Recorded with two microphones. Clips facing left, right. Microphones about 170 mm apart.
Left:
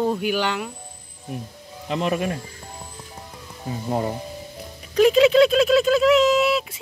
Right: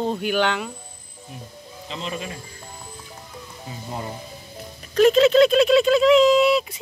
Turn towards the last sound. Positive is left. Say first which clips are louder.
# right 2 dB
turn(degrees=5)  # may be behind; listen again after turning